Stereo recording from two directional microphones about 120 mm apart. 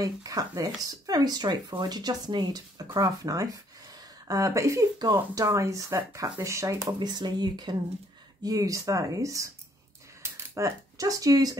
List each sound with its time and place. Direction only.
0.0 s speech: 30° right (ahead or behind)
6.9 s speech: 35° right (ahead or behind)